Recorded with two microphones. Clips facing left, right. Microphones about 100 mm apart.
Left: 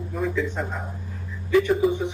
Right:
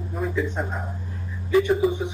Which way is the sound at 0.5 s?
5° right (ahead or behind).